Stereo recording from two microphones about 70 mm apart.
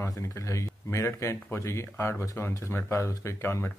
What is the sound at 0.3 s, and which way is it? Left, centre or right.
Speech, left.